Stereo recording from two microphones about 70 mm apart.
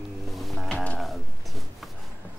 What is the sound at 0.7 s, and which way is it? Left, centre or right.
Music, centre.